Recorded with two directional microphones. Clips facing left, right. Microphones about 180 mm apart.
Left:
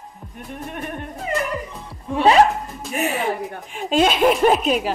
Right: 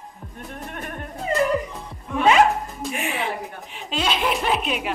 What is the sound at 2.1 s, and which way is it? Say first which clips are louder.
Speech: left 2 dB; 35° left (ahead or behind).